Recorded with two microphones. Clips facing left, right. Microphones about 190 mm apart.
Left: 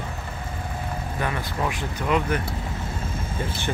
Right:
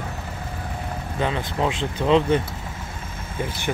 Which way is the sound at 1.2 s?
20° right (ahead or behind).